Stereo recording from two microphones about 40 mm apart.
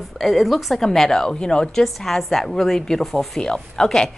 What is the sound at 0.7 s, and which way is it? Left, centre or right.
Speech, centre.